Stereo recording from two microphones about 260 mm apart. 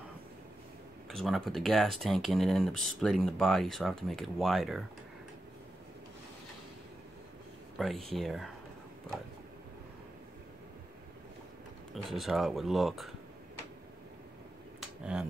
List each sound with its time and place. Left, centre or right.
1.0 s speech: centre
7.7 s speech: centre
11.9 s speech: centre
14.8 s finger snapping: centre